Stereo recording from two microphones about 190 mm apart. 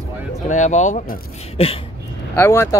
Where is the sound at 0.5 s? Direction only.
40° left (ahead or behind).